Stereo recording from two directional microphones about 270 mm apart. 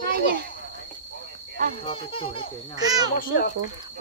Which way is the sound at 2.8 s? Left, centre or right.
Centre.